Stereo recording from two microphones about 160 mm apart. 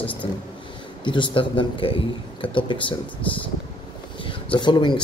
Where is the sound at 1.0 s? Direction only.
30° left (ahead or behind).